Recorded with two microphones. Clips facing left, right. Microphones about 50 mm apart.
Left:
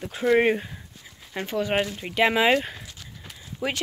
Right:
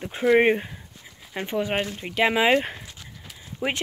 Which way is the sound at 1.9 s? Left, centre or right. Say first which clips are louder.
Even; centre.